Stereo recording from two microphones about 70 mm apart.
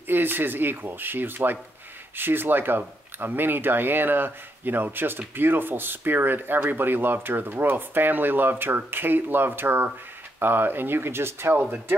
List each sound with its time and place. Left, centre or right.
0.1 s speech: right